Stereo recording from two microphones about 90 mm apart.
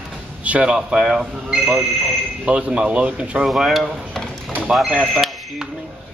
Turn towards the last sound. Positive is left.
turn(degrees=-5)  # may be behind; listen again after turning